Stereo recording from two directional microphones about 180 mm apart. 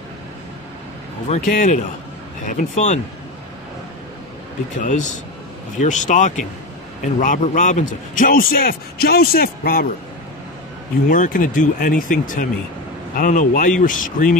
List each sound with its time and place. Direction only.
1.3 s speech: 50° left (ahead or behind)
4.7 s speech: 45° left (ahead or behind)
11.1 s speech: 50° left (ahead or behind)